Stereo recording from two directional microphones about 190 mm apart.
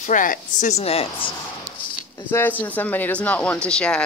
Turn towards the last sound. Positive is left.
turn(degrees=5)  # may be behind; listen again after turning